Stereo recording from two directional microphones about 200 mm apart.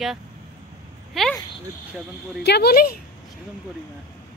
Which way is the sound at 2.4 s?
55° left (ahead or behind).